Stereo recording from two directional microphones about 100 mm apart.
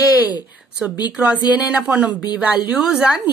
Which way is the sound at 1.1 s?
15° right (ahead or behind).